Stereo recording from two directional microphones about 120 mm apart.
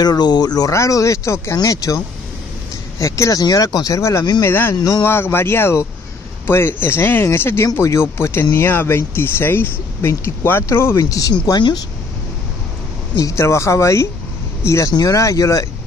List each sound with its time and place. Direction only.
0.0 s speech: 35° left (ahead or behind)
4.5 s speech: 15° left (ahead or behind)
4.7 s speech: 35° left (ahead or behind)
5.0 s speech: 20° left (ahead or behind)
13.2 s speech: 25° left (ahead or behind)